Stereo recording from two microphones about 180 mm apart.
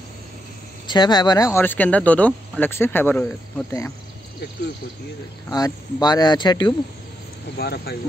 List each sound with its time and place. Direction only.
0.8 s speech: 25° left (ahead or behind)
5.5 s speech: 20° left (ahead or behind)
7.5 s speech: 60° left (ahead or behind)